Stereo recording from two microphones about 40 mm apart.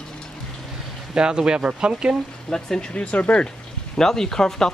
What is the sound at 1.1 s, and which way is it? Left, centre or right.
Speech, right.